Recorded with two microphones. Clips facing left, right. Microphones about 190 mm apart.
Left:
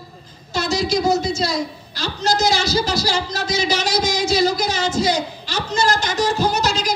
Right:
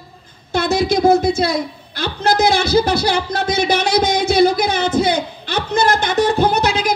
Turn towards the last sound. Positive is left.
turn(degrees=-55)  # may be behind; listen again after turning